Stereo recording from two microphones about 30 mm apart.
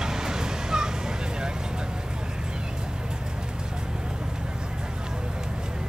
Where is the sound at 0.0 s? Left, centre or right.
Centre.